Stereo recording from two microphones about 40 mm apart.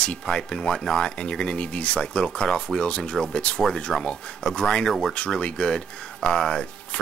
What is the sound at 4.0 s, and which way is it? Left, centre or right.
Speech, left.